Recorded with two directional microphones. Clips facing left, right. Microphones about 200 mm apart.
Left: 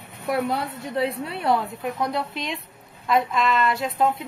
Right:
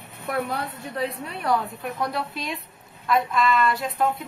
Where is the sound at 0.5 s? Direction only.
25° left (ahead or behind).